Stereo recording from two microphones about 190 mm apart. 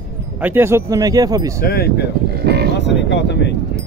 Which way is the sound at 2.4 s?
60° right (ahead or behind).